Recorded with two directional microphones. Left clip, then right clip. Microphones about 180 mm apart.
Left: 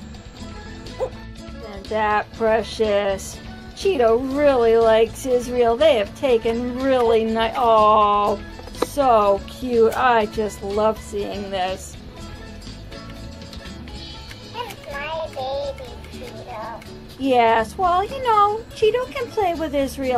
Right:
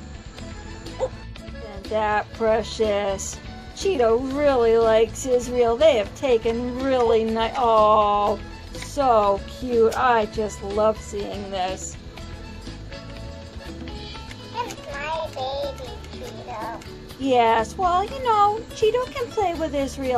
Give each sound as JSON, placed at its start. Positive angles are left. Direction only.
{"t": 1.0, "sound": "bow-wow", "side_deg": 10}
{"t": 1.9, "sound": "a woman's voice", "side_deg": 0}
{"t": 14.5, "sound": "music", "side_deg": -25}
{"t": 17.2, "sound": "a woman's voice", "side_deg": 0}